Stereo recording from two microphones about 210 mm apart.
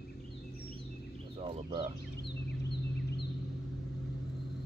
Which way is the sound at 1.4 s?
25° right (ahead or behind).